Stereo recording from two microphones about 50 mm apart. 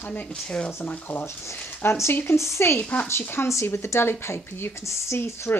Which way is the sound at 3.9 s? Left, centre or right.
Left.